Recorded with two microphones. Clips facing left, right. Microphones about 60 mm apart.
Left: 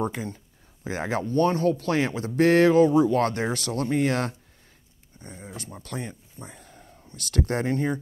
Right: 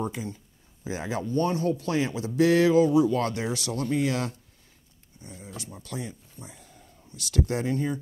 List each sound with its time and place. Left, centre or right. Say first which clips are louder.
0.0 s speech: left 3 dB; left
6.4 s a sound: left 4 dB; left
7.1 s speech: left 1 dB; left